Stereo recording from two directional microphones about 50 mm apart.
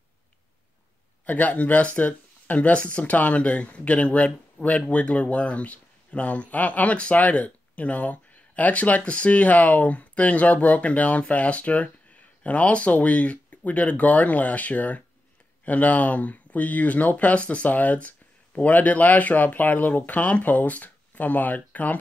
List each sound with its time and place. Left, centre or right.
1.2 s speech: left